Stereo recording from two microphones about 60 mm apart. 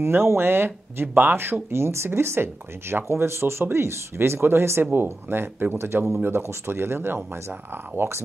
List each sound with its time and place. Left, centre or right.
0.0 s speech: right